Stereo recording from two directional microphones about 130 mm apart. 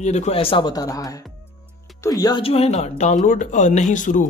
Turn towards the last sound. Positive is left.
turn(degrees=80)